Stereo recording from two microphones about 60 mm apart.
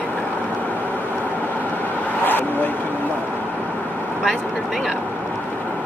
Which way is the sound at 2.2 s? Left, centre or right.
Left.